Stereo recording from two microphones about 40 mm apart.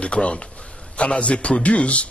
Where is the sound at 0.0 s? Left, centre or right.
Left.